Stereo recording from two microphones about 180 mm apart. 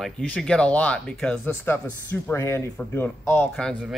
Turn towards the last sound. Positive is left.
turn(degrees=0)  # may be behind; listen again after turning